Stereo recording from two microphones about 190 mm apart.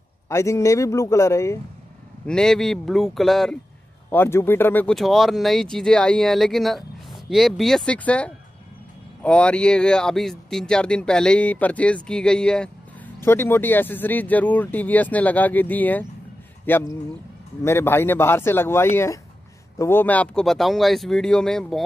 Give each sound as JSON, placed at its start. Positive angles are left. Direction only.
{"t": 0.3, "sound": "speech", "side_deg": 15}
{"t": 2.2, "sound": "speech", "side_deg": 5}
{"t": 4.1, "sound": "speech", "side_deg": 10}